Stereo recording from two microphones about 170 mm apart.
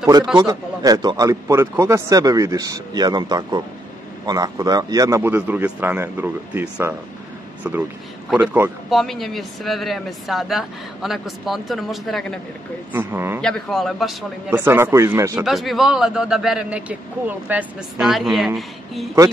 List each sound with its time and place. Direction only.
0.4 s a man's voice: 20° right (ahead or behind); by 12.4 s centre (ahead or behind)
12.9 s speech: 15° right (ahead or behind)
13.4 s speech: 5° left (ahead or behind)
14.5 s speech: 15° right (ahead or behind)
15.4 s speech: centre (ahead or behind)